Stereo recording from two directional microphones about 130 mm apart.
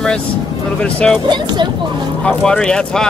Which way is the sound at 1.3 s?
35° right (ahead or behind).